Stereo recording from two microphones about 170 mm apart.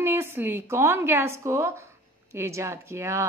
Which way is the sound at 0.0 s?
15° right (ahead or behind).